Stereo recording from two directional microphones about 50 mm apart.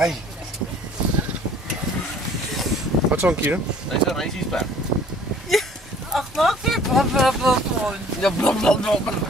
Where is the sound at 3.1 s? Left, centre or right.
Right.